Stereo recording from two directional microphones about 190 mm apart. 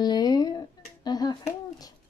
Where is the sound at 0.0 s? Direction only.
20° left (ahead or behind).